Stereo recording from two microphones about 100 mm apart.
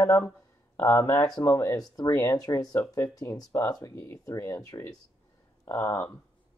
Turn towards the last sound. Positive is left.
turn(degrees=20)  # may be behind; listen again after turning